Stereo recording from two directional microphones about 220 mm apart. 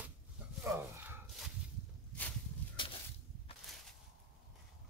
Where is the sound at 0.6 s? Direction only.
10° right (ahead or behind).